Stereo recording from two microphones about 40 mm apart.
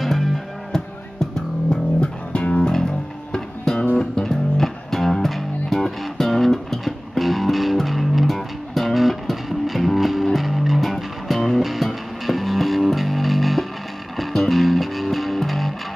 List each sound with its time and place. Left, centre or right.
0.0 s music: centre
0.7 s music: centre
2.0 s music: left
2.6 s music: centre